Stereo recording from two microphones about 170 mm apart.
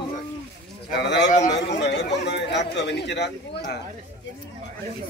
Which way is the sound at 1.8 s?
90° left.